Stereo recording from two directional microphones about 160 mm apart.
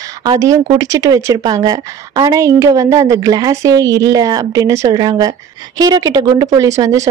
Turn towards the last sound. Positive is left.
turn(degrees=-20)  # may be behind; listen again after turning